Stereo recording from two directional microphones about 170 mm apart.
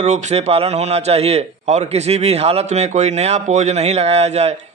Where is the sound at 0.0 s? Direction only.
45° right (ahead or behind).